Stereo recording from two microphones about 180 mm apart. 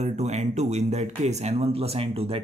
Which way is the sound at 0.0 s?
40° right (ahead or behind).